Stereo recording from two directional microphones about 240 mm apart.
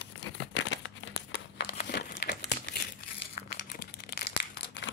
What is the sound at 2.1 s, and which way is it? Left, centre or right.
Crumpling, left.